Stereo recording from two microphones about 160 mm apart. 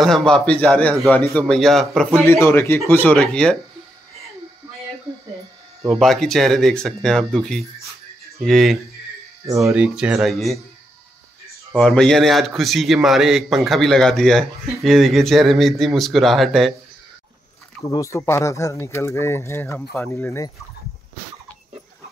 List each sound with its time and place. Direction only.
0.0 s a man's voice: 5° left (ahead or behind)
2.2 s a man's voice: 15° left (ahead or behind)
5.9 s a man's voice: centre (ahead or behind)
9.5 s speech: 20° right (ahead or behind)
9.8 s a man's voice: 5° right (ahead or behind)
11.7 s a man's voice: 5° left (ahead or behind)
17.8 s speech: 20° left (ahead or behind)